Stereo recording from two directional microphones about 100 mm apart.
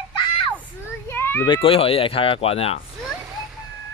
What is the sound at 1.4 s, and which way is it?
Speech, 60° left (ahead or behind).